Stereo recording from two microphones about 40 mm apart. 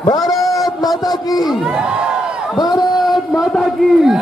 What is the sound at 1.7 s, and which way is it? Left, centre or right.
Speech, right.